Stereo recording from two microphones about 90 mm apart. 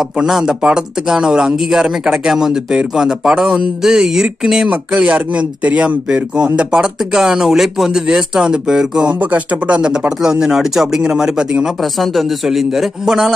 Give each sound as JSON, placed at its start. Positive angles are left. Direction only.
{"t": 0.2, "sound": "a man's voice", "side_deg": -5}